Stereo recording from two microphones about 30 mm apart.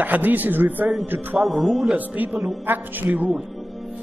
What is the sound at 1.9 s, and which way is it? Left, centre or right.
Speech, right.